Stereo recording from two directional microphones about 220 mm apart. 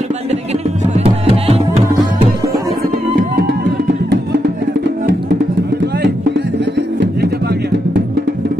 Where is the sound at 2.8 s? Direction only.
45° right (ahead or behind).